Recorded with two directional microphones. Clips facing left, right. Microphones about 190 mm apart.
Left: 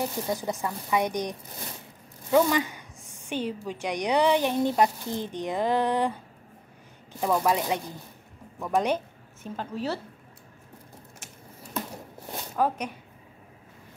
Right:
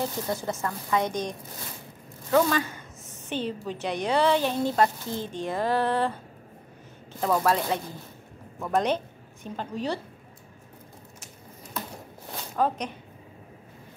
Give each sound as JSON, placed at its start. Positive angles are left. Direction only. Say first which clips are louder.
{"t": 0.0, "sound": "a woman's voice", "louder": "even", "side_deg": 15}
{"t": 2.3, "sound": "a woman's voice", "louder": "left 1 dB", "side_deg": 15}
{"t": 12.5, "sound": "a woman's voice", "louder": "even", "side_deg": 10}